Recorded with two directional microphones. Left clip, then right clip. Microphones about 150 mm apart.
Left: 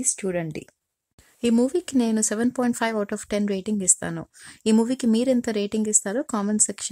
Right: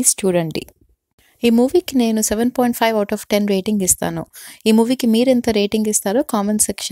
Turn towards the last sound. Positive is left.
turn(degrees=-25)  # may be behind; listen again after turning